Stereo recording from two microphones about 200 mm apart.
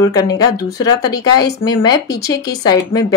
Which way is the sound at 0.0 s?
20° left (ahead or behind).